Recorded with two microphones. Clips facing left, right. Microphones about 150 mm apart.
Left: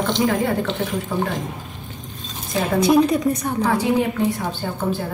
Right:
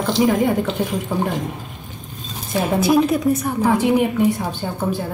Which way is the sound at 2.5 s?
5° right (ahead or behind).